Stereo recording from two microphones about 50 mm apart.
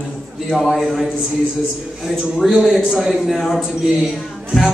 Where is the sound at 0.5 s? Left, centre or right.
Centre.